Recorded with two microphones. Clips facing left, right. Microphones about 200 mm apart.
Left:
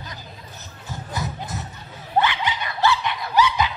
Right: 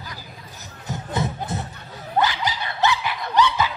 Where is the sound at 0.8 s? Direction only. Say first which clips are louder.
Right 4 dB; 25° right (ahead or behind).